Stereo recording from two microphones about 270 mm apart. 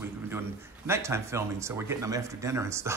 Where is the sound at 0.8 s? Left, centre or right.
Centre.